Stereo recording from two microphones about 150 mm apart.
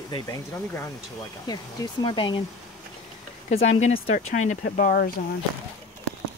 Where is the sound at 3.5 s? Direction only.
50° left (ahead or behind); by 5.1 s 85° left.